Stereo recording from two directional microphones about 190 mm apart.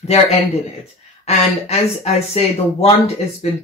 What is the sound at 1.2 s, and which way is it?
Speech, 35° left (ahead or behind).